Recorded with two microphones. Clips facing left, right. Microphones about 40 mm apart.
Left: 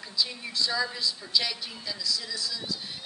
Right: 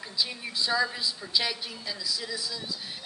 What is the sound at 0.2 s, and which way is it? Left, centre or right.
A man's voice, centre.